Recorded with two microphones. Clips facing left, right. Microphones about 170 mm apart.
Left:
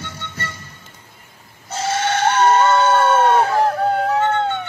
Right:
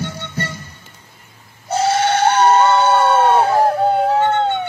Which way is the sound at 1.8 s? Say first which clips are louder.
Right 4 dB; 40° right (ahead or behind).